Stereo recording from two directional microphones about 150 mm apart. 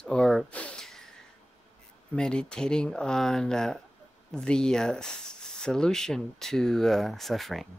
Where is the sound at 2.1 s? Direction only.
5° left (ahead or behind).